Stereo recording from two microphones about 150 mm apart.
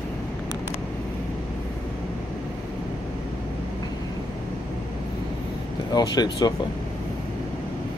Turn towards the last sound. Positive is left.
turn(degrees=25)  # may be behind; listen again after turning